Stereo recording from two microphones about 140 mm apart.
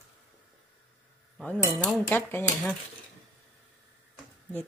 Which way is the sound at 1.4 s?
10° left (ahead or behind).